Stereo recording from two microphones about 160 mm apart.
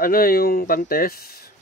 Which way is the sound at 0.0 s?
65° left (ahead or behind).